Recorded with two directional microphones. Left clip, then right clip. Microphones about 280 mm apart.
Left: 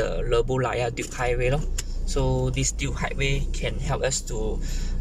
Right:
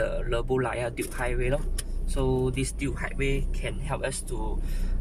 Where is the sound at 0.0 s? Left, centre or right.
Centre.